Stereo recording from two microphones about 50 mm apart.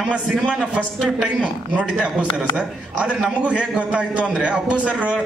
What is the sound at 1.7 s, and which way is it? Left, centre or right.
A man's voice, right.